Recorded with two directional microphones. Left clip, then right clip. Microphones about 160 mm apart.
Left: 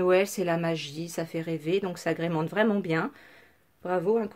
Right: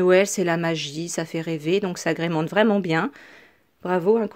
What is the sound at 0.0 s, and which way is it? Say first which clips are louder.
A woman's voice: right 6 dB; 50° right (ahead or behind).